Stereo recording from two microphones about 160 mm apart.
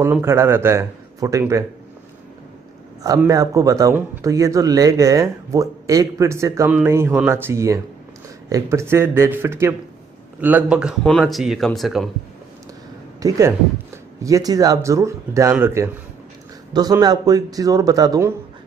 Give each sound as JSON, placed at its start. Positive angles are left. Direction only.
{"t": 0.0, "sound": "speech", "side_deg": -15}
{"t": 3.3, "sound": "speech", "side_deg": -20}
{"t": 13.2, "sound": "speech", "side_deg": -20}